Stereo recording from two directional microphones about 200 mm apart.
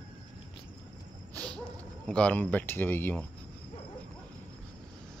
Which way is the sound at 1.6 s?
5° left (ahead or behind).